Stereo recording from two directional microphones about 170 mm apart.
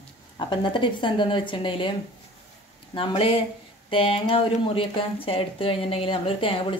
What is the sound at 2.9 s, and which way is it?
Speech, 30° left (ahead or behind).